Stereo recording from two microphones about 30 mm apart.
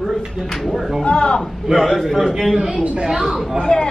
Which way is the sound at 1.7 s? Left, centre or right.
Right.